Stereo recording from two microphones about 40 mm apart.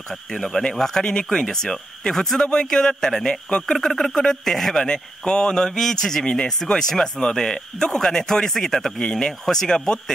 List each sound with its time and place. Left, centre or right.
0.3 s speech: centre
1.0 s speech: left
4.8 s a man's voice: left
6.2 s a man's voice: left